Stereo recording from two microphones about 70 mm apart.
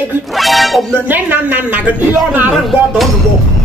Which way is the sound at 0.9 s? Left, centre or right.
Right.